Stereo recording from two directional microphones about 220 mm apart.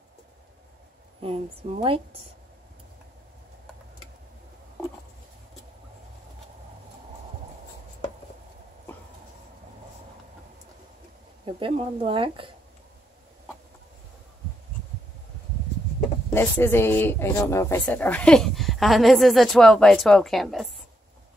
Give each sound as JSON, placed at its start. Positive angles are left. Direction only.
{"t": 1.2, "sound": "speech", "side_deg": -25}
{"t": 11.4, "sound": "speech", "side_deg": -25}
{"t": 16.3, "sound": "speech", "side_deg": 10}